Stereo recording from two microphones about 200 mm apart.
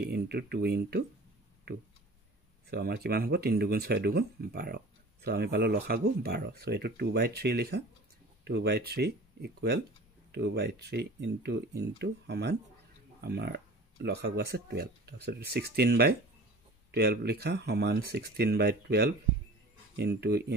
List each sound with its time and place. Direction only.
0.0 s speech: 55° right (ahead or behind)
2.7 s speech: 50° right (ahead or behind)